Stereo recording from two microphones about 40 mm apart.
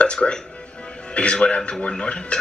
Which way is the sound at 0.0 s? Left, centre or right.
Left.